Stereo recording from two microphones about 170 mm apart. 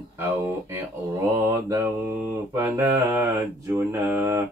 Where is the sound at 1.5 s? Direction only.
15° right (ahead or behind).